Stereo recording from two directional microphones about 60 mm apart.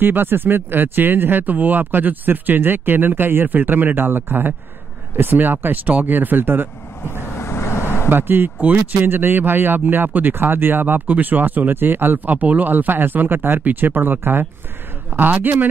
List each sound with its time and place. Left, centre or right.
0.0 s speech: right
7.3 s vehicle: left
8.1 s speech: right